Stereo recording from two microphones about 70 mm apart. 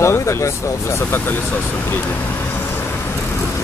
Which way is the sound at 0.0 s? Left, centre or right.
Left.